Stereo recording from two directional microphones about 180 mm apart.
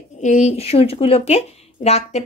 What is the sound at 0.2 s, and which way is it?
Speech, 40° left (ahead or behind).